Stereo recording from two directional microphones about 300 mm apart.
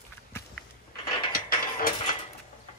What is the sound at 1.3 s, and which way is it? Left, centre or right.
Music, left.